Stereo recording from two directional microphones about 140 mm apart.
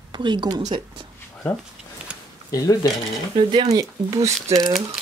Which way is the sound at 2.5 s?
25° left (ahead or behind).